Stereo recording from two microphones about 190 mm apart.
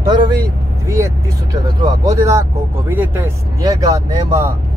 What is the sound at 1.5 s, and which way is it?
Speech, 20° right (ahead or behind).